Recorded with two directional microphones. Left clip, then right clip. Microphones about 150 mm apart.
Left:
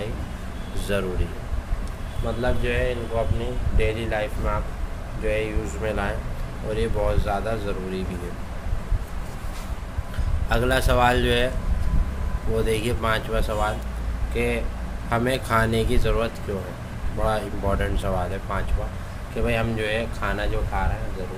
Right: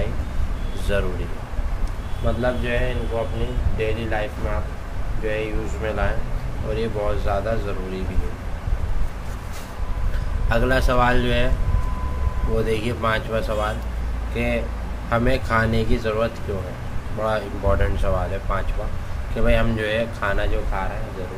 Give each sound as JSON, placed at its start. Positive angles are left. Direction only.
{"t": 0.9, "sound": "speech", "side_deg": 20}
{"t": 2.4, "sound": "speech", "side_deg": 25}
{"t": 10.5, "sound": "speech", "side_deg": 25}
{"t": 12.6, "sound": "speech", "side_deg": 25}
{"t": 19.4, "sound": "speech", "side_deg": 5}